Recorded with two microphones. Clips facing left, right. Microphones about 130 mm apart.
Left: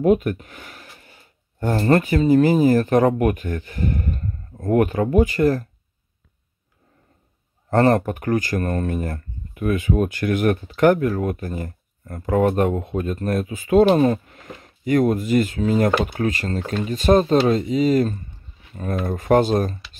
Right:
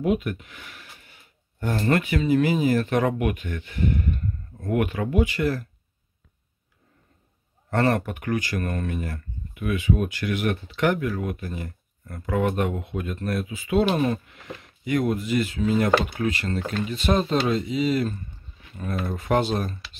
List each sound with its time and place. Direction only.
0.0 s speech: 45° left (ahead or behind)
7.7 s speech: 40° left (ahead or behind)